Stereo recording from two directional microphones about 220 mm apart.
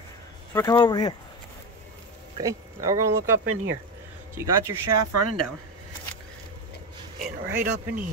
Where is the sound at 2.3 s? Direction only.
15° right (ahead or behind).